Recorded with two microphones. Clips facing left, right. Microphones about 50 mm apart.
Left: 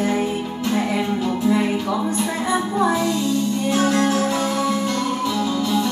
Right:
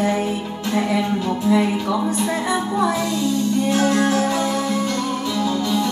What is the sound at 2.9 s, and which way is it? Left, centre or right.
Music, centre.